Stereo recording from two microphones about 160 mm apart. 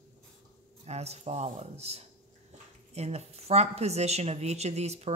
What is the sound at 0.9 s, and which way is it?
Speech, 40° right (ahead or behind).